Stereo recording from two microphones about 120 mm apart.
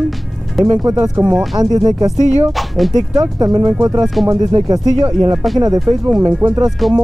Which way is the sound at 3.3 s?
30° right (ahead or behind).